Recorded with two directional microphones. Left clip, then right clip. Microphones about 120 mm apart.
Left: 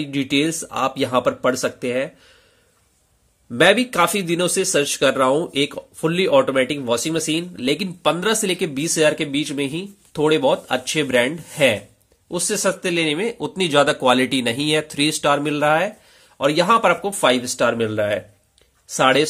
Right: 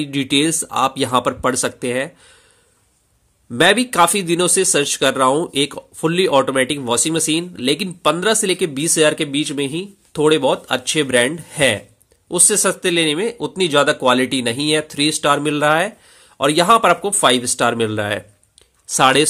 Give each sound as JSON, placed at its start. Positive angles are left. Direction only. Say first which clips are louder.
{"t": 0.0, "sound": "speech", "louder": "right 3 dB", "side_deg": -40}
{"t": 3.5, "sound": "speech", "louder": "right 2 dB", "side_deg": -35}